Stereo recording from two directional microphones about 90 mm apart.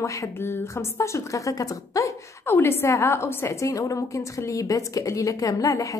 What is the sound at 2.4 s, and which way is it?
A woman's voice, 25° left (ahead or behind).